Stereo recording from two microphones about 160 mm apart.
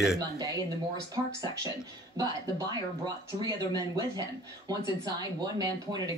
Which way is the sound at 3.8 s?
25° right (ahead or behind).